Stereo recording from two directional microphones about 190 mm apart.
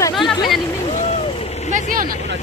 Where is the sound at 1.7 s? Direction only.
45° right (ahead or behind).